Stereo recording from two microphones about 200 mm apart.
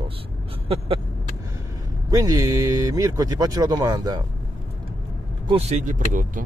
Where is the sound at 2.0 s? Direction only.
20° right (ahead or behind).